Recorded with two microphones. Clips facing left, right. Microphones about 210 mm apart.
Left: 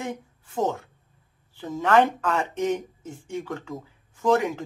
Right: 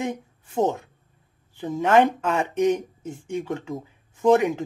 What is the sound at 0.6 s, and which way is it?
Speech, 20° right (ahead or behind).